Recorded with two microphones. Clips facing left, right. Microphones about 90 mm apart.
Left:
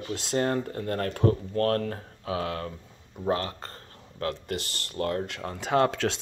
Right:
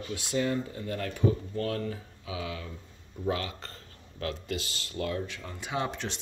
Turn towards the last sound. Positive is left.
turn(degrees=75)  # may be behind; listen again after turning